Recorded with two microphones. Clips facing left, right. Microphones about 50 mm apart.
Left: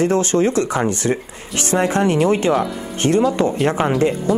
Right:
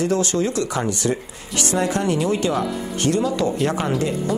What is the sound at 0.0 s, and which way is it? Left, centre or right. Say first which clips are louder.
Speech: left 4 dB; left.